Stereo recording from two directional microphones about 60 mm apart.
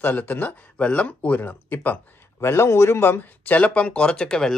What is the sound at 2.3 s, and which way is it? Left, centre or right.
Speech, left.